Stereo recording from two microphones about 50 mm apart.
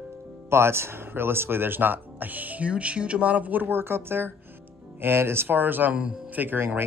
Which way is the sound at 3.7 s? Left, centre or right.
Right.